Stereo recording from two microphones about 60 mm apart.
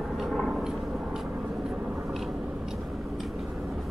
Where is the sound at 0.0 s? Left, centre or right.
Centre.